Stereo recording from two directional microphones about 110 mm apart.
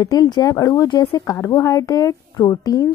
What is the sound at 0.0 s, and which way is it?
A woman's voice, 35° left (ahead or behind).